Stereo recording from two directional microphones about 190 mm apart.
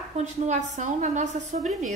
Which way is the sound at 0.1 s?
40° right (ahead or behind).